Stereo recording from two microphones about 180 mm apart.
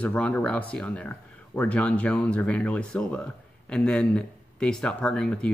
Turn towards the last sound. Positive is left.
turn(degrees=5)  # may be behind; listen again after turning